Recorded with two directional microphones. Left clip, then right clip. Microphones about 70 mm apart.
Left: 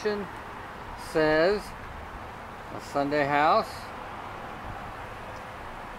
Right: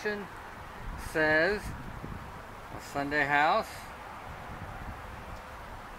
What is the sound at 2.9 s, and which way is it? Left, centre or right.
Speech, right.